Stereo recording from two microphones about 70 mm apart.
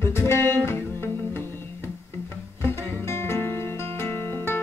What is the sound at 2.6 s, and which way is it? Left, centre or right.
Music, left.